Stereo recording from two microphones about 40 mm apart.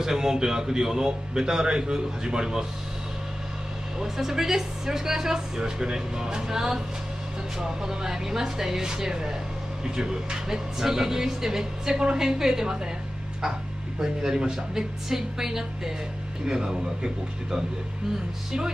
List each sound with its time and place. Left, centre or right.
0.0 s speech: centre
4.0 s speech: centre